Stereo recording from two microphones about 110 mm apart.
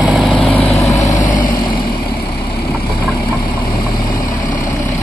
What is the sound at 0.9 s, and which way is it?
Vehicle, 30° left (ahead or behind).